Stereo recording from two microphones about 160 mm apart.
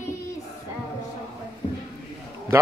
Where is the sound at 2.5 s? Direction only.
15° right (ahead or behind).